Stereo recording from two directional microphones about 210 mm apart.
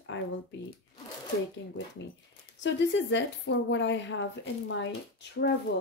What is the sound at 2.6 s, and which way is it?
A woman's voice, 60° left (ahead or behind).